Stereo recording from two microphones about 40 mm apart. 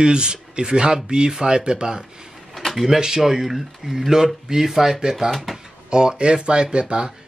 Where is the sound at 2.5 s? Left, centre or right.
Centre.